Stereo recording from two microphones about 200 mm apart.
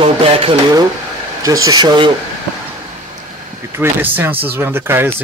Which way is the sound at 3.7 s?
10° right (ahead or behind).